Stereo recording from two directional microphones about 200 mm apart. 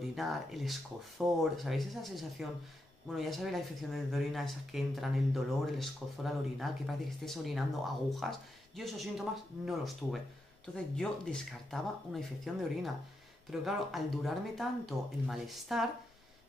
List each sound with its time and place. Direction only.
0.1 s speech: centre (ahead or behind)